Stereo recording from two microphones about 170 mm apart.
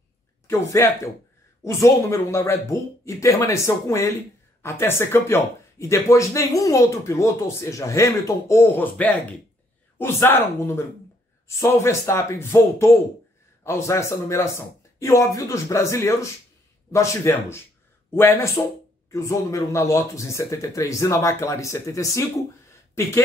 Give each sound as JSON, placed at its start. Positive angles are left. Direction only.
{"t": 0.5, "sound": "speech", "side_deg": 15}